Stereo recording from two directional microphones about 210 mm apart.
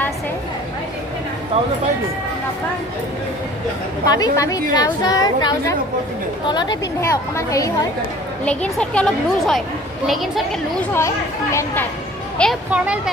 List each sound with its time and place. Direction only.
4.0 s a woman's voice: 20° left (ahead or behind)
8.5 s speech: 5° left (ahead or behind)
10.9 s a woman's voice: 15° left (ahead or behind)
12.4 s speech: centre (ahead or behind)